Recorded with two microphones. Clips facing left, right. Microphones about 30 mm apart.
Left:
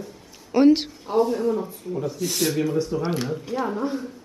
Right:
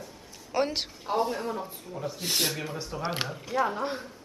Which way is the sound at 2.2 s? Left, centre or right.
Right.